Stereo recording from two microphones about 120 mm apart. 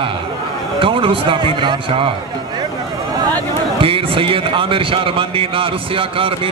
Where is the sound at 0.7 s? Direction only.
45° right (ahead or behind).